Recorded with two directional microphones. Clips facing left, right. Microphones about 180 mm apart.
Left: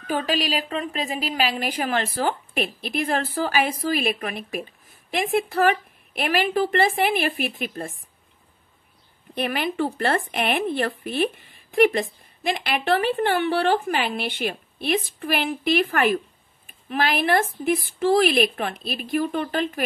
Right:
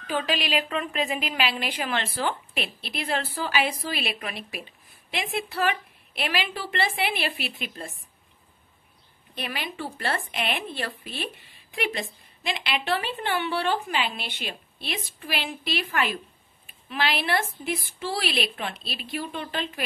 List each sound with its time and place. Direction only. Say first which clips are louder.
0.0 s speech: left 3 dB; 45° left (ahead or behind)
9.3 s speech: left 8 dB; 50° left (ahead or behind)